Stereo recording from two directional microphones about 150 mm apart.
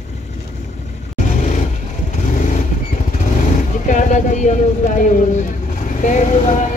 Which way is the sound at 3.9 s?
55° left (ahead or behind).